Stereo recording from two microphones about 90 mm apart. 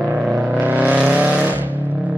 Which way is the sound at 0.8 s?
15° right (ahead or behind).